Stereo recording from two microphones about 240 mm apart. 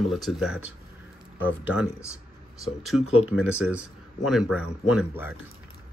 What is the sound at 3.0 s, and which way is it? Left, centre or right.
Speech, left.